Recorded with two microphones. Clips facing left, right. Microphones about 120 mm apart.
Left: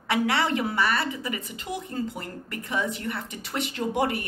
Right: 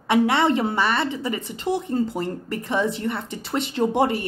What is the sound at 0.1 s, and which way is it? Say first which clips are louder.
A woman's voice: right 6 dB; 25° right (ahead or behind).